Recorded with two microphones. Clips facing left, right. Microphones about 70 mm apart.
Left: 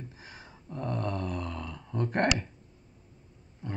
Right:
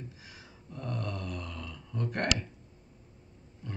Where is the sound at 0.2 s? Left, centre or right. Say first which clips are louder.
Left 3 dB; left.